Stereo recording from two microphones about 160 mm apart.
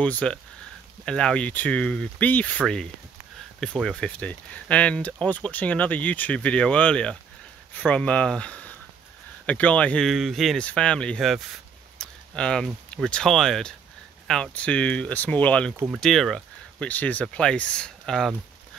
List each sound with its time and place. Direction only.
0.0 s speech: 5° left (ahead or behind)
15.7 s speech: 10° right (ahead or behind)
16.0 s speech: centre (ahead or behind)